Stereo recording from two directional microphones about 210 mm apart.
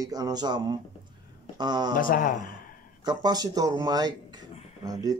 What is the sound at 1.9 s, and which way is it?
Speech, 40° left (ahead or behind).